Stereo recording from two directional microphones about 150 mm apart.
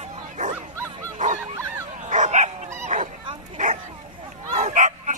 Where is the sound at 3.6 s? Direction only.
55° right (ahead or behind).